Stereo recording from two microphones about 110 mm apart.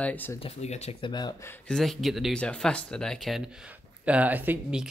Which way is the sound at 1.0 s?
40° left (ahead or behind).